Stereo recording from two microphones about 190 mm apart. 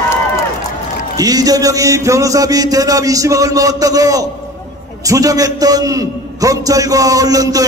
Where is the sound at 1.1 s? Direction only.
20° right (ahead or behind).